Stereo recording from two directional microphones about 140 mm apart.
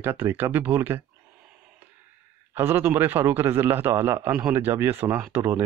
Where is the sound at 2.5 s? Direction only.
15° right (ahead or behind).